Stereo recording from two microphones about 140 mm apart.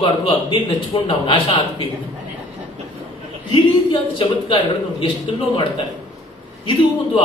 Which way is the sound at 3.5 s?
35° left (ahead or behind).